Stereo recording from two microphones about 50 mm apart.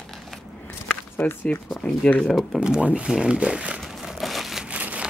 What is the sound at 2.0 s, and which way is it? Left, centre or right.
Speech, left.